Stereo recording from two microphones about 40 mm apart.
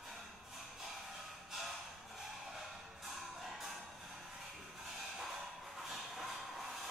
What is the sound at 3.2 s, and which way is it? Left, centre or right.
Music, centre.